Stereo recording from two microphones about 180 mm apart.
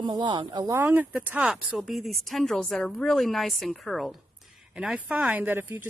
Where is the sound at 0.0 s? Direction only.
25° right (ahead or behind).